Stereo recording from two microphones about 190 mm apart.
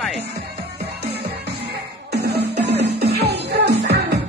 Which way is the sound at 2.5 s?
65° right (ahead or behind).